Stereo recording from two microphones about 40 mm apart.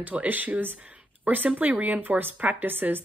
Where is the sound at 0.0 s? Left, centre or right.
Right.